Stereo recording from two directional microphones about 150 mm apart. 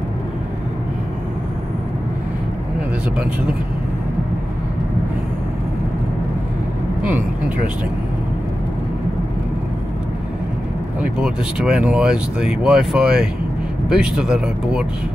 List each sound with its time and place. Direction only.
7.0 s speech: 10° right (ahead or behind)
11.0 s speech: 5° right (ahead or behind)